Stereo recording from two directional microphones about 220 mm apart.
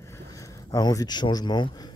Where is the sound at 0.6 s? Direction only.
20° left (ahead or behind).